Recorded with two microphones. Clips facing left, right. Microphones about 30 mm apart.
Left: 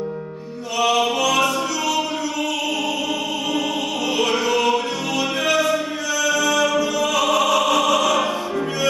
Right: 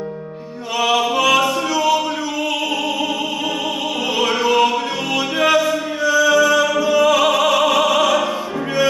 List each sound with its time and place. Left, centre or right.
0.7 s music: centre
4.2 s music: centre
7.3 s opera: centre